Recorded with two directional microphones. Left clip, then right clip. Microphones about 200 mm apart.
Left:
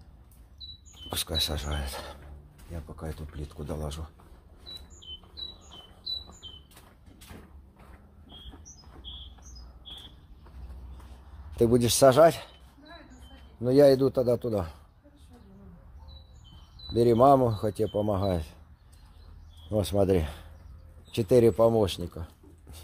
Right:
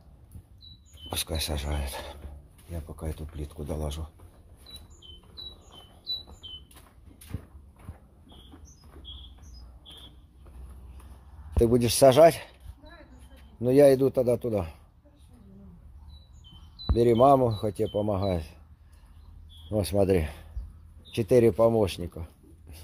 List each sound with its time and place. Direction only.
1.0 s a man's voice: 10° right (ahead or behind)
3.2 s speech: 20° right (ahead or behind)
11.5 s a man's voice: 5° right (ahead or behind)
13.6 s a man's voice: 20° right (ahead or behind)
16.9 s speech: 10° right (ahead or behind)
19.7 s a man's voice: 10° right (ahead or behind)